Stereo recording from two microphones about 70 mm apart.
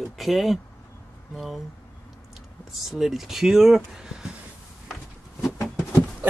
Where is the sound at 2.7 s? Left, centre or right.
Centre.